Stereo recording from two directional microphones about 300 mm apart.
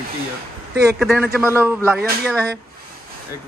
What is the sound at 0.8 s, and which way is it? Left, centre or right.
A man's voice, centre.